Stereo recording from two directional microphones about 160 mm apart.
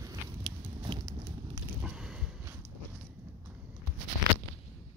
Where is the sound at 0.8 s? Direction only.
25° right (ahead or behind).